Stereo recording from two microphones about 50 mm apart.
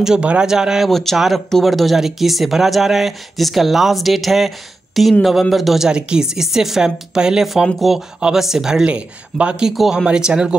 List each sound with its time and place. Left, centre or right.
0.2 s speech: right
0.5 s speech: centre
0.8 s speech: centre
1.1 s speech: centre
5.9 s speech: centre
7.8 s speech: centre
8.8 s speech: right
9.7 s speech: centre